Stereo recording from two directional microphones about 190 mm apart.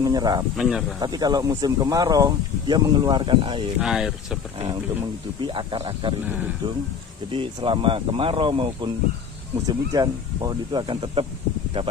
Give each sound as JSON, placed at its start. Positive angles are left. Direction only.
{"t": 0.0, "sound": "speech", "side_deg": -20}
{"t": 0.6, "sound": "speech", "side_deg": 0}
{"t": 0.9, "sound": "speech", "side_deg": -20}
{"t": 3.8, "sound": "speech", "side_deg": 0}
{"t": 5.4, "sound": "speech", "side_deg": -25}
{"t": 7.3, "sound": "speech", "side_deg": -25}